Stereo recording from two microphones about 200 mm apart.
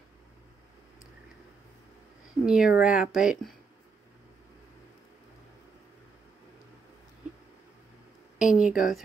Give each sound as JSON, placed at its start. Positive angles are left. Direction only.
{"t": 2.4, "sound": "speech", "side_deg": -5}
{"t": 8.4, "sound": "speech", "side_deg": 40}
{"t": 8.6, "sound": "speech", "side_deg": 0}